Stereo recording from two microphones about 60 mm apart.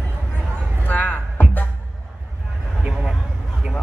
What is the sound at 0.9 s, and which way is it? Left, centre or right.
Music, left.